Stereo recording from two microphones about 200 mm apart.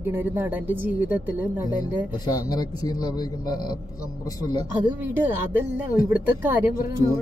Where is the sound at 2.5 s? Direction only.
20° left (ahead or behind).